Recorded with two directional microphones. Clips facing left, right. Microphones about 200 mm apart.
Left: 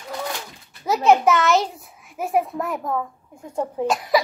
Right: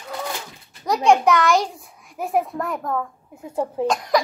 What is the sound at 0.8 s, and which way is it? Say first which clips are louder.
A child's voice: even; 5° left (ahead or behind).